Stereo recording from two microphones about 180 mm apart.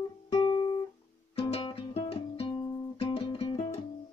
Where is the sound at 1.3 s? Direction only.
30° left (ahead or behind).